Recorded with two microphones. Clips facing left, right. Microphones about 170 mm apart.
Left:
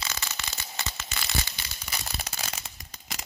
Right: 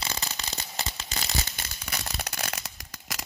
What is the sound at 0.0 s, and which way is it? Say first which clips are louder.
Tearing: right 2 dB; 30° right (ahead or behind).